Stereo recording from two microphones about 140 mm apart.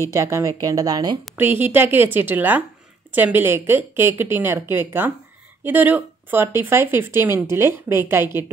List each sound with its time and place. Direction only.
0.1 s a woman's voice: 20° right (ahead or behind)
1.3 s speech: 15° right (ahead or behind)